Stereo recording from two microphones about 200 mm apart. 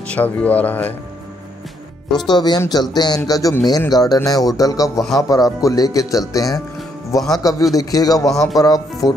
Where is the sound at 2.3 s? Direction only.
20° left (ahead or behind).